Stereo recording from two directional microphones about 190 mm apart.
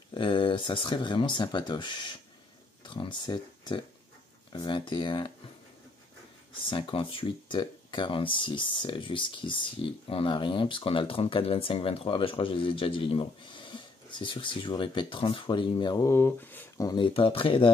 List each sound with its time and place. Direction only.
0.1 s speech: 25° left (ahead or behind)
6.6 s speech: 25° left (ahead or behind)